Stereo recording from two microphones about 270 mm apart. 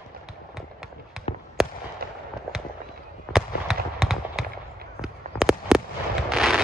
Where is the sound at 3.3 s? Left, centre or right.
Centre.